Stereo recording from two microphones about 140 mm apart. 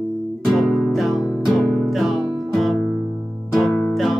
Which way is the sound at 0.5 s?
Centre (ahead or behind).